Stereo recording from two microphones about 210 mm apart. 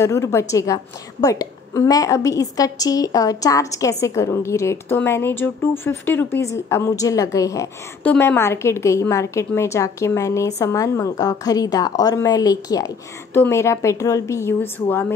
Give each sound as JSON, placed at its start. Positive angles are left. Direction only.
{"t": 0.0, "sound": "a woman's voice", "side_deg": 15}